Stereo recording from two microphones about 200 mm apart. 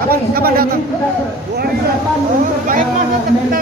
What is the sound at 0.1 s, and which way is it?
Speech, 50° right (ahead or behind).